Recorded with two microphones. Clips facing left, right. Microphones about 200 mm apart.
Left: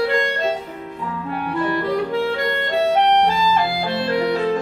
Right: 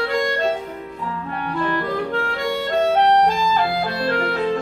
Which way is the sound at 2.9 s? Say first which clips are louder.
Even; 20° left (ahead or behind).